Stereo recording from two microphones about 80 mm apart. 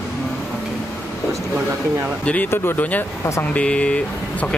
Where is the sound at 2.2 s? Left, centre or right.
Centre.